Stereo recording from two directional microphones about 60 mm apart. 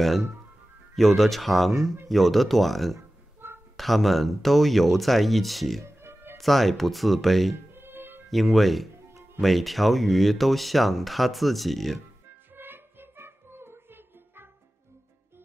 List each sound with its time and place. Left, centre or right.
0.0 s speech: centre
3.3 s a sound: right
3.7 s speech: centre
5.9 s music: right
6.3 s speech: centre
7.7 s music: right
8.3 s speech: centre
12.5 s music: right